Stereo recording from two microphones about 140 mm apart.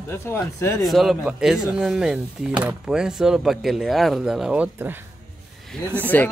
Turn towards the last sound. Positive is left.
turn(degrees=15)  # may be behind; listen again after turning